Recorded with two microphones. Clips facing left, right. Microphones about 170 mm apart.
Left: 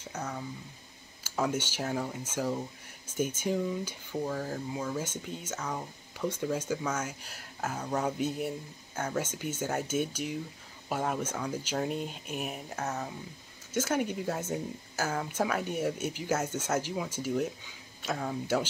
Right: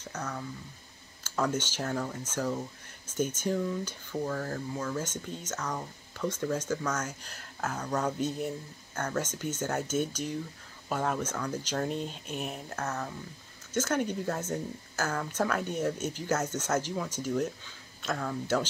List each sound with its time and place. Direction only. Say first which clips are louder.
0.1 s speech: even; 10° left (ahead or behind)